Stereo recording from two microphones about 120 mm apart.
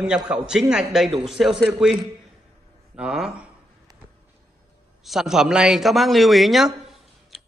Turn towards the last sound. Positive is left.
turn(degrees=0)  # may be behind; listen again after turning